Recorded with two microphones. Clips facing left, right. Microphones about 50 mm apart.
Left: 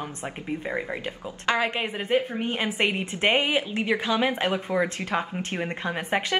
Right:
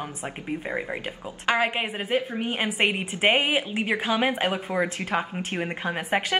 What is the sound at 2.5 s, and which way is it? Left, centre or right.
Speech, centre.